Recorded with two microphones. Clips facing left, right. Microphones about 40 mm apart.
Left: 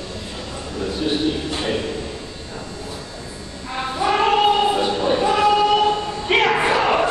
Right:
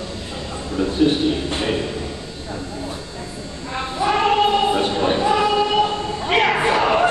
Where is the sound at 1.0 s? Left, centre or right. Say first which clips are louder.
Right 6 dB; right.